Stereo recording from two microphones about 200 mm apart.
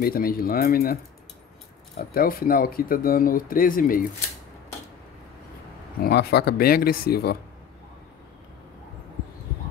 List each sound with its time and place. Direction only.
0.0 s speech: 45° left (ahead or behind)
2.0 s speech: 45° left (ahead or behind)
5.9 s speech: 55° left (ahead or behind)